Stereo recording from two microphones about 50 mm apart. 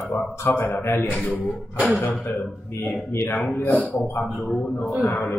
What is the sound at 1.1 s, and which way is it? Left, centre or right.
Speech, left.